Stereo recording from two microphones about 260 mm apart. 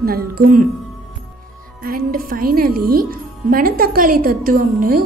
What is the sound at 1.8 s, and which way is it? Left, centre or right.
Speech, right.